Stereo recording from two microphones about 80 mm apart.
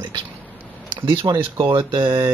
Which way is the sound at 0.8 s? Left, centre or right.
Right.